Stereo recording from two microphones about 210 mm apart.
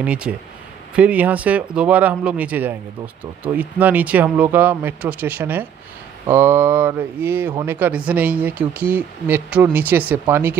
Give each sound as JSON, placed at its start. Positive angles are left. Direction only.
{"t": 0.0, "sound": "speech", "side_deg": -5}